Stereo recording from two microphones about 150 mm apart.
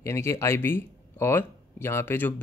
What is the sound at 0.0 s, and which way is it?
Speech, 20° left (ahead or behind).